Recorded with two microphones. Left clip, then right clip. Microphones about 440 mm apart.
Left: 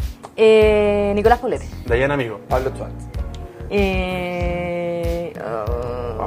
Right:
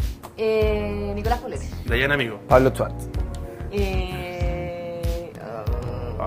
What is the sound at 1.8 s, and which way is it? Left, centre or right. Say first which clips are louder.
Speech: left 3 dB; left.